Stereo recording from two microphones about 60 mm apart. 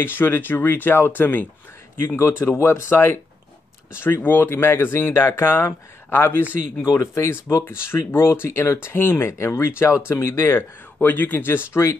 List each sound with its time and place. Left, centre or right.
0.0 s speech: left